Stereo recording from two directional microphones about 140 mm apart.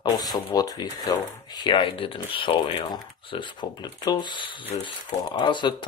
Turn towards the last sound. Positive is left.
turn(degrees=35)  # may be behind; listen again after turning